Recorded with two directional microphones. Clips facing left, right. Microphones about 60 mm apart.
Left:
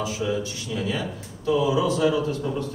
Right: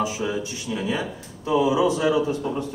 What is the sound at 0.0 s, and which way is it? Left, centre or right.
A man's voice, right.